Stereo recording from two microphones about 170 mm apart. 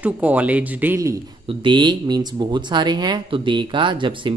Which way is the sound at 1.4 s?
30° right (ahead or behind).